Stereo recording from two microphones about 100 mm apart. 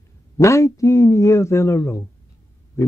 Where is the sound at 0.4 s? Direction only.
30° left (ahead or behind).